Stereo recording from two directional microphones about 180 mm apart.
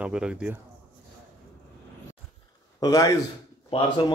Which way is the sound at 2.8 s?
20° left (ahead or behind).